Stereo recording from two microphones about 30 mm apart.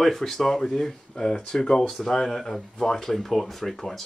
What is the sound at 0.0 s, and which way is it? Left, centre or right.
Speech, centre.